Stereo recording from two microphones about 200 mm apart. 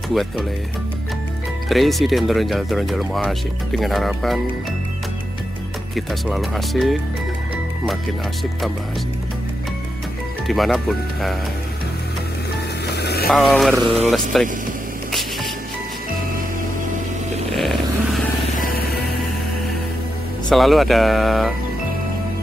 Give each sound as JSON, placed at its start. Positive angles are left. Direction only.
{"t": 0.1, "sound": "speech", "side_deg": 0}
{"t": 1.7, "sound": "speech", "side_deg": 0}
{"t": 5.9, "sound": "speech", "side_deg": 0}
{"t": 10.4, "sound": "speech", "side_deg": 0}
{"t": 12.8, "sound": "music", "side_deg": 55}
{"t": 13.3, "sound": "speech", "side_deg": 0}
{"t": 17.5, "sound": "a sound", "side_deg": 0}
{"t": 18.6, "sound": "music", "side_deg": 45}
{"t": 20.4, "sound": "speech", "side_deg": 0}